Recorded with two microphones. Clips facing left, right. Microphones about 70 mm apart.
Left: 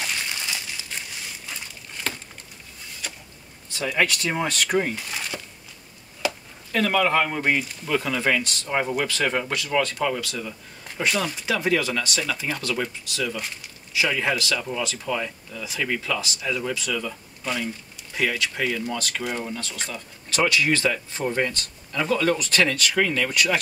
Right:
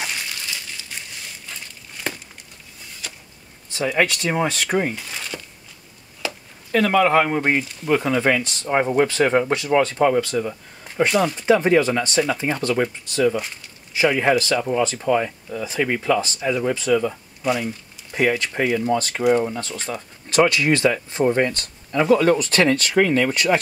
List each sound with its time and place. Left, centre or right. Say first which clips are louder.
3.7 s speech: right 3 dB; right
5.3 s a sound: right 1 dB; centre
6.7 s speech: right 5 dB; right
11.3 s speech: right 7 dB; right
17.4 s speech: right 7 dB; centre
18.1 s speech: right 5 dB; right